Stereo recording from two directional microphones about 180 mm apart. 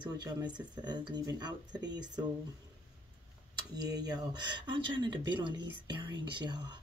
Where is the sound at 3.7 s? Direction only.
20° right (ahead or behind).